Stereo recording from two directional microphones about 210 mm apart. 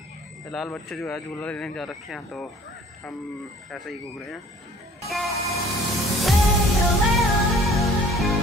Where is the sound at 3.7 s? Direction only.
Centre (ahead or behind).